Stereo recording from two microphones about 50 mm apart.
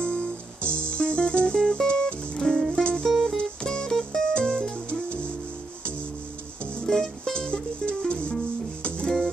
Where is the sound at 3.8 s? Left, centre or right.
Centre.